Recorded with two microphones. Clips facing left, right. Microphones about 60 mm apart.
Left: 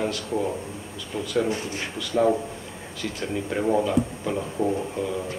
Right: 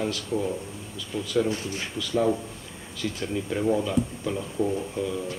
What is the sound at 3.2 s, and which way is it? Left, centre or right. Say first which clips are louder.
Speech: left 1 dB; centre.